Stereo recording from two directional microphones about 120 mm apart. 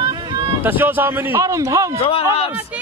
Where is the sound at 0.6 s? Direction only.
15° right (ahead or behind).